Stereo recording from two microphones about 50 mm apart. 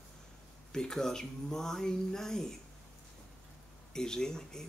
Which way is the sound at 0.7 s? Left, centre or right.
Centre.